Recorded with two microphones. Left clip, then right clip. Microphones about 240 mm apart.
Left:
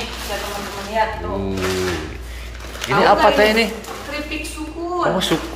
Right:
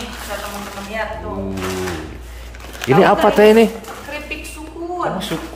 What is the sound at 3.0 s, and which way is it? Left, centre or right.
Speech, right.